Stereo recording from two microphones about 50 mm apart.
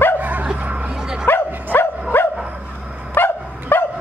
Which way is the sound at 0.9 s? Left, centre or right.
Centre.